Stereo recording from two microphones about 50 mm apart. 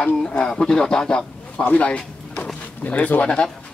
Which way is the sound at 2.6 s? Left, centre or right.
Left.